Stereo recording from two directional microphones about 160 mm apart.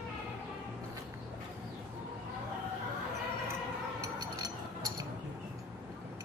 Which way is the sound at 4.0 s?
20° right (ahead or behind).